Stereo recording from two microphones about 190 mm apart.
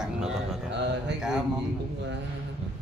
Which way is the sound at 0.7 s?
65° right (ahead or behind).